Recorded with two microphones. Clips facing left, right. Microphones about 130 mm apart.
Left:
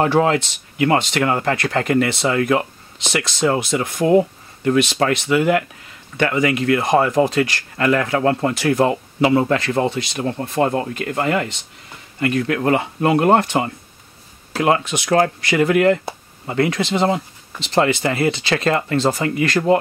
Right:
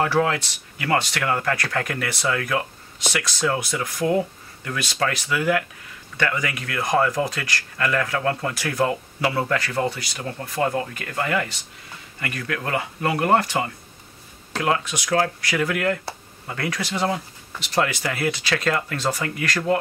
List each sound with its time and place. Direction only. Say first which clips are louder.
0.0 s speech: left 5 dB; 30° left (ahead or behind)